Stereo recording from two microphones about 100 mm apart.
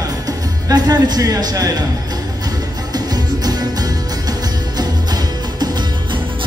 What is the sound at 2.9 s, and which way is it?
Music, 40° right (ahead or behind).